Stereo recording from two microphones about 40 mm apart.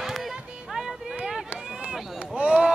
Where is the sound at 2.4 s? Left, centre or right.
Right.